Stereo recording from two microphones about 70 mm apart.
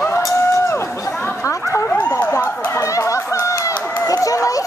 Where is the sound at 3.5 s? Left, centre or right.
Left.